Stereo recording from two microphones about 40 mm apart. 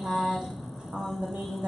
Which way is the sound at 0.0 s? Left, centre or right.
Centre.